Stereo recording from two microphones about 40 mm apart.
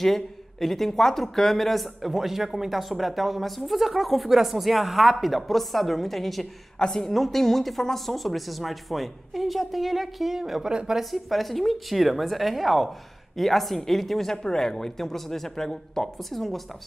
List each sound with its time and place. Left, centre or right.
0.0 s speech: centre
6.8 s a woman's voice: centre
7.1 s speech: centre
10.7 s speech: right
11.0 s a woman's voice: centre